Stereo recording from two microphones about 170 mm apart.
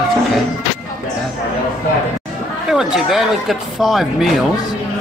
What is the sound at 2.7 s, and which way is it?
Speech, 5° right (ahead or behind).